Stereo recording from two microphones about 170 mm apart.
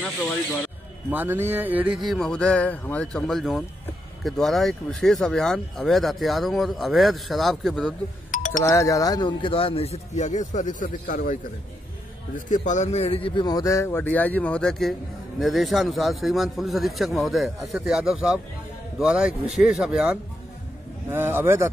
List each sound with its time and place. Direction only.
1.1 s a sound: 10° right (ahead or behind)
2.0 s a man's voice: 5° left (ahead or behind)
8.3 s music: 45° left (ahead or behind)
8.6 s speech: 20° left (ahead or behind); by 11.3 s 50° left (ahead or behind)
12.4 s a man's voice: 45° left (ahead or behind); by 20.2 s 5° right (ahead or behind)
21.1 s a sound: 10° right (ahead or behind)